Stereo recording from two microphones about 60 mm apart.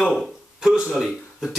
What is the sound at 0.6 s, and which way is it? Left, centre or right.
Speech, centre.